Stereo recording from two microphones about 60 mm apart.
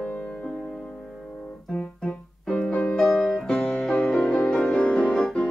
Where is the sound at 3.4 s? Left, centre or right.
Centre.